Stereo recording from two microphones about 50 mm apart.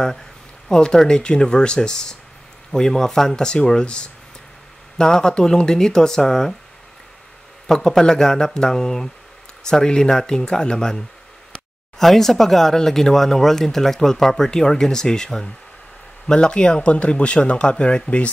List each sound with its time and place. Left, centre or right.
0.7 s speech: centre
7.6 s speech: centre; by 18.3 s left